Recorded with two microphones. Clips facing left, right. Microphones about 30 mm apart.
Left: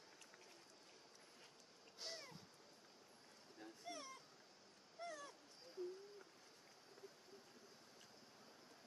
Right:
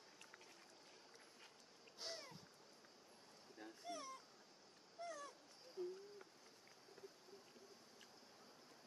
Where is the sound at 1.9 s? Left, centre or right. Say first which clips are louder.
Right 1 dB; centre.